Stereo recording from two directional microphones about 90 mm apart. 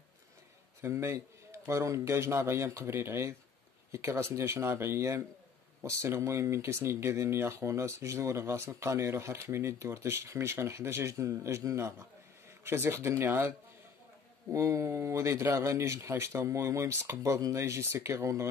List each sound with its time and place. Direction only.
0.7 s speech: 30° right (ahead or behind)